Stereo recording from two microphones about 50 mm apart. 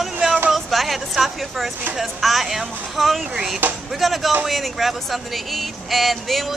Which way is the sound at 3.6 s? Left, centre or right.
Right.